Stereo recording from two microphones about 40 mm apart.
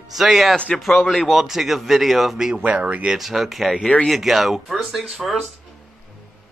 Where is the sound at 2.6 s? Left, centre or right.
Right.